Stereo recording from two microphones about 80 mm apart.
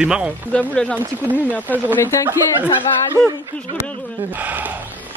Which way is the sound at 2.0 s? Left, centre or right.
Left.